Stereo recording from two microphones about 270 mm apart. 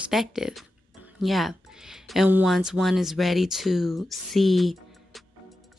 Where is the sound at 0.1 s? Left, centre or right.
Centre.